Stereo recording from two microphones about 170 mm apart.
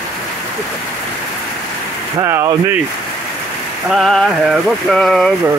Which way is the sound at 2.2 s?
20° right (ahead or behind).